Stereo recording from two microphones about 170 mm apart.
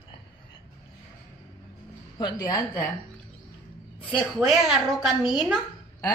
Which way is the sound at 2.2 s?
20° left (ahead or behind).